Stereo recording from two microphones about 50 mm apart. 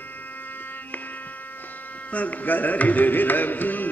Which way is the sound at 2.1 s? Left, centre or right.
Left.